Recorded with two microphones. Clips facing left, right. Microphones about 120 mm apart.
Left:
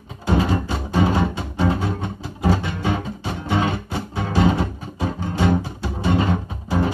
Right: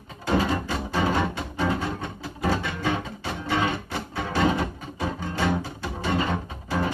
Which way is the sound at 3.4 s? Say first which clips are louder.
Left 3 dB; 25° left (ahead or behind).